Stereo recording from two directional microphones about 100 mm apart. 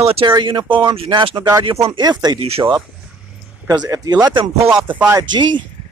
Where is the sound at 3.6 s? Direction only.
40° right (ahead or behind).